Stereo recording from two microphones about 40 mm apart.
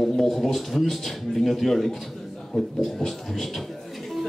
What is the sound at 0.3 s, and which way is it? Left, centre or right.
A man's voice, centre.